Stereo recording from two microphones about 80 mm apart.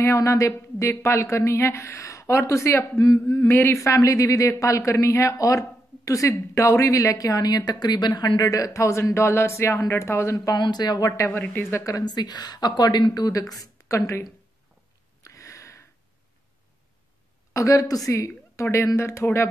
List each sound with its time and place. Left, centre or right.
0.0 s speech: left
10.6 s a woman's voice: left
11.1 s speech: left
12.0 s a woman's voice: left
15.2 s a sound: left
17.5 s a woman's voice: left